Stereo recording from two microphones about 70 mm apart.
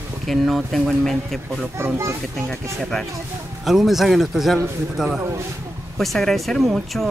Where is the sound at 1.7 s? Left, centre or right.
Right.